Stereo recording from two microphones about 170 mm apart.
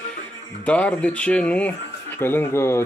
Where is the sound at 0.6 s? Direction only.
10° left (ahead or behind).